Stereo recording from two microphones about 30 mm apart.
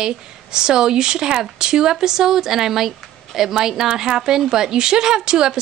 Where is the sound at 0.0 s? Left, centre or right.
Right.